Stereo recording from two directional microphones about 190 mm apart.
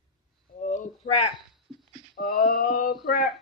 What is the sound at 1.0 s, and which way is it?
Speech, 35° left (ahead or behind).